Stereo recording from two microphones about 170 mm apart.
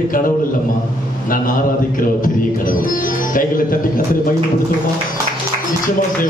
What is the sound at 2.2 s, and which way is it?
Speech, 55° left (ahead or behind).